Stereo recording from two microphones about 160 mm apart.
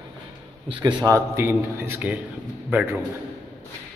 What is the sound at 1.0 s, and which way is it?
A man's voice, 15° right (ahead or behind).